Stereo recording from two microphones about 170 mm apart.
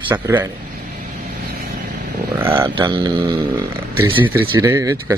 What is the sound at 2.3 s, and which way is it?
Speech, 15° right (ahead or behind).